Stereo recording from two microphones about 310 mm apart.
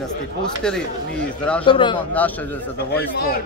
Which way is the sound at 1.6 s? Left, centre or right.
Centre.